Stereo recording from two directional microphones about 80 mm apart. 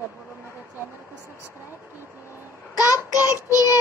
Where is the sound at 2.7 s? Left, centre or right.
Left.